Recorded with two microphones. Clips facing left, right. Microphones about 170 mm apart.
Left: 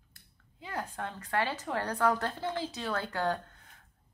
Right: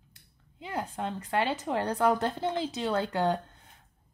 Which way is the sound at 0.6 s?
20° right (ahead or behind).